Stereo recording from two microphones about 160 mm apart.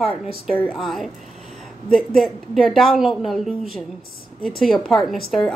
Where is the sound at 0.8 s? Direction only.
Centre (ahead or behind).